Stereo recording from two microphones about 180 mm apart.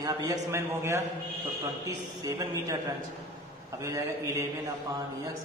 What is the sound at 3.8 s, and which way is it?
Speech, 15° right (ahead or behind).